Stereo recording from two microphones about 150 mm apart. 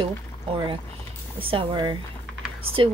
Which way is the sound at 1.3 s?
35° right (ahead or behind).